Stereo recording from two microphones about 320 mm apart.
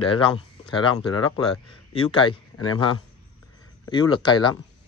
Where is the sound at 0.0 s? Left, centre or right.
Centre.